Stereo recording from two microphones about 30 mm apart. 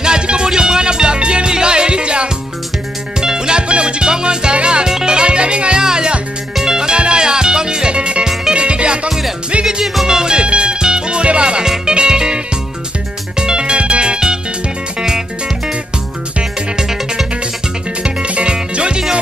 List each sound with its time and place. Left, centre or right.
0.0 s music: right
10.0 s music: right
11.6 s music: centre
11.9 s music: right
13.4 s music: right
18.2 s music: right